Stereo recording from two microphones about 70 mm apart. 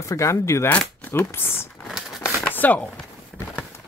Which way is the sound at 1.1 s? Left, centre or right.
Left.